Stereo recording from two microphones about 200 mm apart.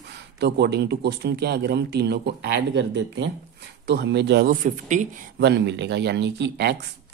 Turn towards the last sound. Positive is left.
turn(degrees=-55)  # may be behind; listen again after turning